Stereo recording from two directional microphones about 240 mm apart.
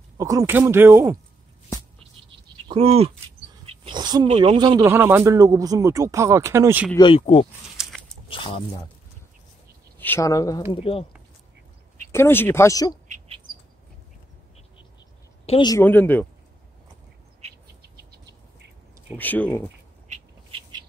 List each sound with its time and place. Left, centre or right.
0.2 s speech: centre
2.5 s a sound: right
3.6 s speech: centre
7.0 s speech: left
7.7 s a sound: centre
8.3 s speech: left
9.9 s speech: centre
12.1 s speech: centre
15.4 s speech: left
17.8 s bird: right
19.1 s speech: centre
20.1 s a sound: right